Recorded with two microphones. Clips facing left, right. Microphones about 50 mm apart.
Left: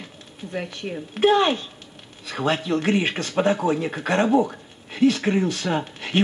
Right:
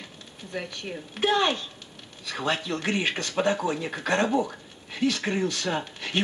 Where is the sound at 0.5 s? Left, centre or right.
Centre.